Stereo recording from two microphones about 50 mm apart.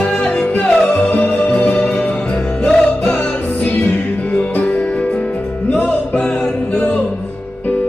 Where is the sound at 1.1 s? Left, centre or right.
Left.